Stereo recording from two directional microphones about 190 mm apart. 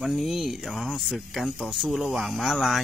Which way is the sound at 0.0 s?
Centre (ahead or behind).